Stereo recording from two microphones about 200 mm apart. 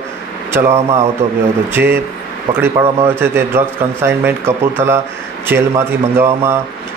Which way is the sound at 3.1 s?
10° right (ahead or behind).